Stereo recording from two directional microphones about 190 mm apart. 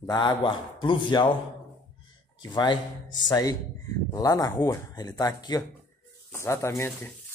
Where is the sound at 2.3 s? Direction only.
25° left (ahead or behind).